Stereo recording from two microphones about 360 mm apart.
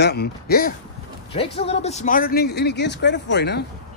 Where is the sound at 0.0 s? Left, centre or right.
Left.